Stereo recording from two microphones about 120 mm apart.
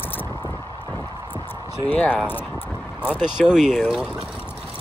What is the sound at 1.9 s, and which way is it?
Speech, 15° left (ahead or behind).